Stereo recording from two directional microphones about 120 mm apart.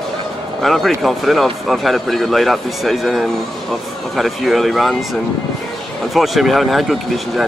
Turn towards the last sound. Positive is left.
turn(degrees=0)  # may be behind; listen again after turning